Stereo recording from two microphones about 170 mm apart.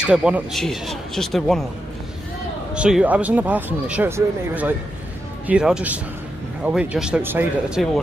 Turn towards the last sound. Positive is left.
turn(degrees=-10)  # may be behind; listen again after turning